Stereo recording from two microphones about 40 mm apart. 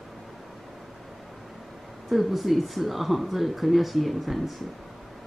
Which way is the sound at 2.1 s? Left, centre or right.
Centre.